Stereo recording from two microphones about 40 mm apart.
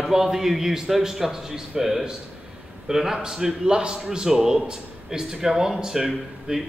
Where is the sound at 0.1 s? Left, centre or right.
Centre.